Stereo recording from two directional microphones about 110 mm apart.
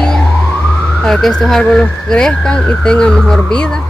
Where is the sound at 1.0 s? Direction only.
5° left (ahead or behind).